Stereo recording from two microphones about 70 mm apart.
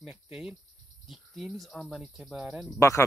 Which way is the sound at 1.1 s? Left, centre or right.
Centre.